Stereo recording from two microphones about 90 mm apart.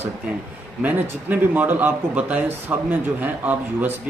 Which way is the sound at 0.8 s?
20° right (ahead or behind).